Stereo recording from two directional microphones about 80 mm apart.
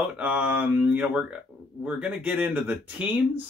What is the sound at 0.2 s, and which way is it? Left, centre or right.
Speech, centre.